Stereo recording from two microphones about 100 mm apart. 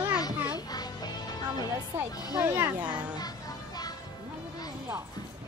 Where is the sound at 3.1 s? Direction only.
40° left (ahead or behind).